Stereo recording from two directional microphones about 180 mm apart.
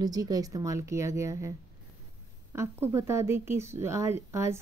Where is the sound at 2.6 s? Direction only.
15° right (ahead or behind).